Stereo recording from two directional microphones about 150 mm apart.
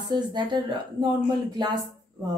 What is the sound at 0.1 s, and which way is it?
Speech, 30° right (ahead or behind).